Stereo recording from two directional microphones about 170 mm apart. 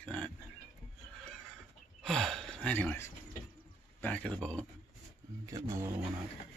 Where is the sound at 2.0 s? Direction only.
Centre (ahead or behind).